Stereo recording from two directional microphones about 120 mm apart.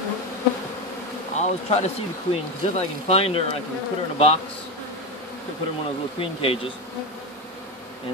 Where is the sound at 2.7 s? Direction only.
60° left (ahead or behind).